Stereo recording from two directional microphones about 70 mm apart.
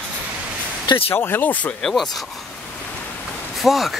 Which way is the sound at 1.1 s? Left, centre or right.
Left.